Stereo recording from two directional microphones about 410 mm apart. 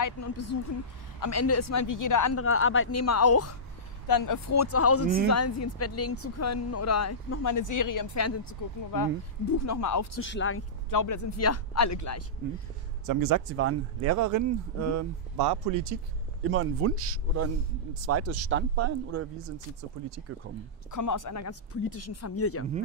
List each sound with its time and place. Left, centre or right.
0.0 s speech: left
2.4 s speech: left
4.1 s speech: left
10.2 s speech: left
10.9 s speech: left
13.0 s speech: right
13.5 s speech: right
15.3 s speech: right
16.4 s speech: right
20.0 s speech: right
20.9 s speech: left